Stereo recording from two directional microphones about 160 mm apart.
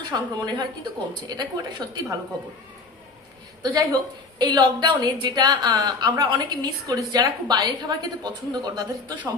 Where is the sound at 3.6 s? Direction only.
25° right (ahead or behind).